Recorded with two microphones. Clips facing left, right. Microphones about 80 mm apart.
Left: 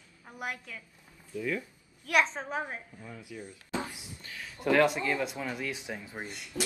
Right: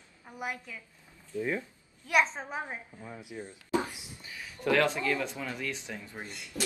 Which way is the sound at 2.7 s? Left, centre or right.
Right.